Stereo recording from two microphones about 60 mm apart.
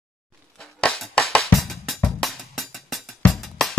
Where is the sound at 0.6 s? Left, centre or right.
Centre.